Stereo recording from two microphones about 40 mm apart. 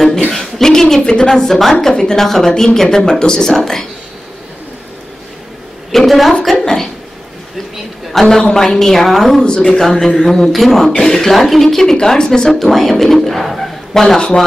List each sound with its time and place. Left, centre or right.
0.3 s a woman's voice: centre
5.9 s a woman's voice: centre
6.5 s a sound: centre
8.1 s a sound: centre
8.4 s speech: centre
9.4 s speech: centre
14.0 s speech: centre